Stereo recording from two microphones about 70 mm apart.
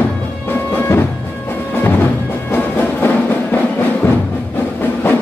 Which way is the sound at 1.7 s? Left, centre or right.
Left.